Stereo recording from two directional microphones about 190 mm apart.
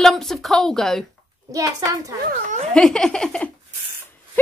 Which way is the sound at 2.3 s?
40° right (ahead or behind).